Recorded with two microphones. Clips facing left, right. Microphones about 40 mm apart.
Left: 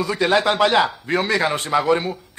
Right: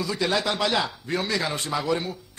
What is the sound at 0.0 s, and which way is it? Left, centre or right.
A man's voice, left.